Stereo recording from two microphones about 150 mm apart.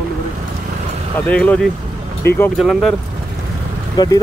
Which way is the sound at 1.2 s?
10° left (ahead or behind).